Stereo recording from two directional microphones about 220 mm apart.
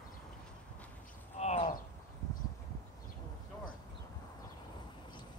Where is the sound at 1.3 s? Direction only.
30° left (ahead or behind).